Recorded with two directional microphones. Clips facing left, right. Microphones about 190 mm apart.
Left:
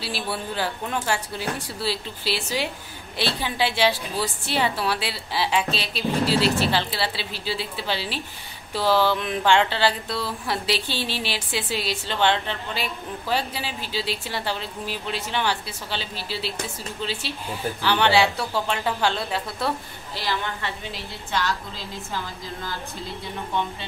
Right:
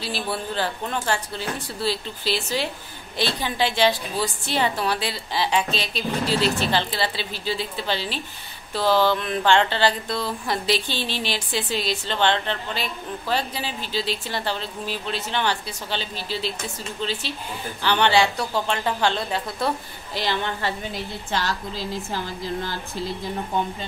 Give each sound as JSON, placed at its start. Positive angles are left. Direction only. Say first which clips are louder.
{"t": 0.0, "sound": "a woman's voice", "louder": "right 1 dB", "side_deg": 10}
{"t": 20.2, "sound": "a woman's voice", "louder": "right 4 dB", "side_deg": -15}
{"t": 21.5, "sound": "a woman's voice", "louder": "right 2 dB", "side_deg": -40}